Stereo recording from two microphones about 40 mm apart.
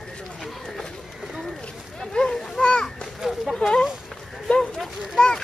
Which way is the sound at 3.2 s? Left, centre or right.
Centre.